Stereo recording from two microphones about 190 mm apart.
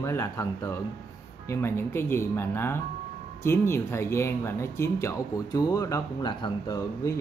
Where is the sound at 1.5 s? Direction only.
15° left (ahead or behind).